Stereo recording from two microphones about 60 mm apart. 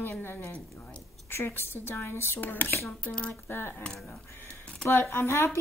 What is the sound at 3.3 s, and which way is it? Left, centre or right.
Speech, left.